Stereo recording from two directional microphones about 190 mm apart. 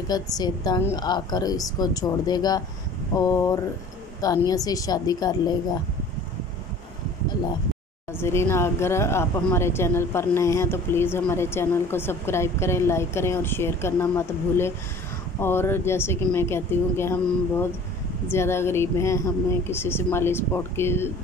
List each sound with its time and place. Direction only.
0.1 s a woman's voice: 20° left (ahead or behind)
8.1 s speech: 15° left (ahead or behind)